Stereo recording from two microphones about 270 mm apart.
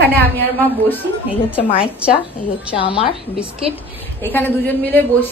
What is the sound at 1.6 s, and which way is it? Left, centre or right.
A woman's voice, left.